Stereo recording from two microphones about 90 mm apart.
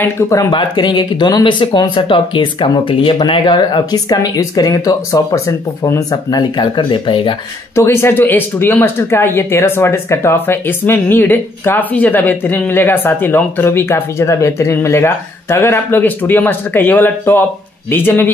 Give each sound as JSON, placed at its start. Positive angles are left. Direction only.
{"t": 0.5, "sound": "speech", "side_deg": 55}
{"t": 3.2, "sound": "speech", "side_deg": 55}
{"t": 5.9, "sound": "speech", "side_deg": 55}
{"t": 7.7, "sound": "speech", "side_deg": 30}